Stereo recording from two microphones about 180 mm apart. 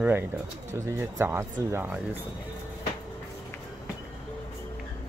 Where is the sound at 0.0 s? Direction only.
10° right (ahead or behind).